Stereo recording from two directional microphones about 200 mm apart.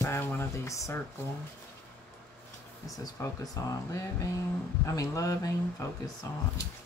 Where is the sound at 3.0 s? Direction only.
15° left (ahead or behind).